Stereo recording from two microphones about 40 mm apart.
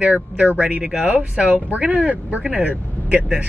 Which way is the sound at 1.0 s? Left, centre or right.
Right.